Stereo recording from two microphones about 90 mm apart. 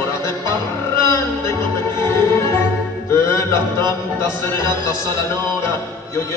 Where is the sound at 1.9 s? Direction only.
30° left (ahead or behind).